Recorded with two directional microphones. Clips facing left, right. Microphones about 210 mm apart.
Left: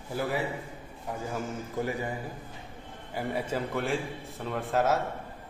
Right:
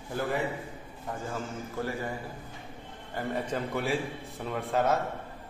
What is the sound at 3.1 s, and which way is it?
A man's voice, 10° left (ahead or behind).